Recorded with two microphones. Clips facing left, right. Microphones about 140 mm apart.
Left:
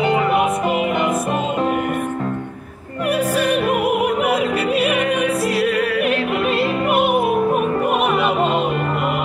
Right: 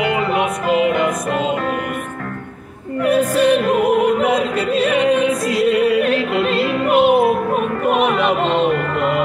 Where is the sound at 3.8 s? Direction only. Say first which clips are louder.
Right 3 dB; 10° left (ahead or behind).